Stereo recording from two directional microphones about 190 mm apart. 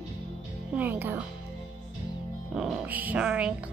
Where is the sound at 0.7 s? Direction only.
10° right (ahead or behind).